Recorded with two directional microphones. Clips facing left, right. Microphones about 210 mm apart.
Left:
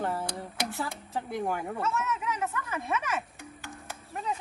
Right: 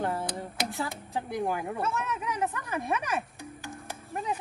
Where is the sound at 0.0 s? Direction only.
Centre (ahead or behind).